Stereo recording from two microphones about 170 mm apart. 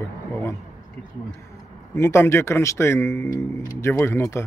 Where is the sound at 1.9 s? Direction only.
15° left (ahead or behind).